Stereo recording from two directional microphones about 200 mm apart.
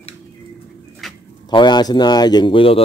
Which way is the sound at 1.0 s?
Centre (ahead or behind).